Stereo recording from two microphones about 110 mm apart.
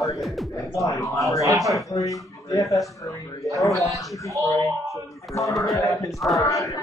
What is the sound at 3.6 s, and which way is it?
Speech, centre (ahead or behind).